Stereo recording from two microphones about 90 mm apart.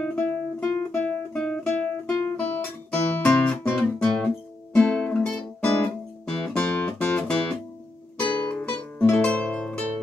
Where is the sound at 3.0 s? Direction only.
20° left (ahead or behind).